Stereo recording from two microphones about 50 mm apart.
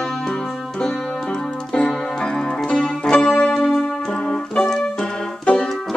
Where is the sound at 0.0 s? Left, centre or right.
Centre.